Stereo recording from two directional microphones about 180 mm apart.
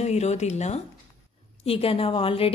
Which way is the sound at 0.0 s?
40° left (ahead or behind).